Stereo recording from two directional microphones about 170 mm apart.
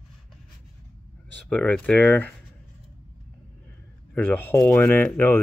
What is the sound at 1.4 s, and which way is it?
Speech, 5° left (ahead or behind).